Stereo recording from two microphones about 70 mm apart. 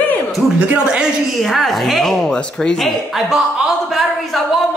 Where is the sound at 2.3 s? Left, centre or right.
Centre.